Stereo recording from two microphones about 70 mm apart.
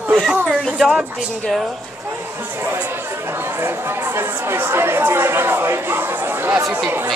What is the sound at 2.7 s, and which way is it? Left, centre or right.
Speech, right.